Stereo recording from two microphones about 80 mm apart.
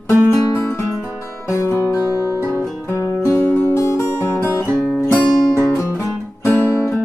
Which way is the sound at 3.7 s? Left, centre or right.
Left.